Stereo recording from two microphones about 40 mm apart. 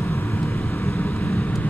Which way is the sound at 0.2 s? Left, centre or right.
Left.